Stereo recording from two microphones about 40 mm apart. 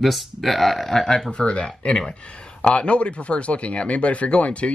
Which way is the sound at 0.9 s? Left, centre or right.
Centre.